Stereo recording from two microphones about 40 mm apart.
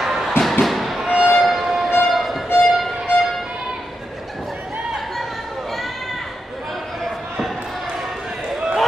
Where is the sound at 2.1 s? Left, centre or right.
Centre.